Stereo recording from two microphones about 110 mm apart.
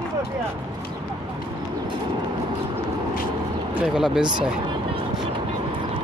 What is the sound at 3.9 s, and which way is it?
Speech, 5° right (ahead or behind).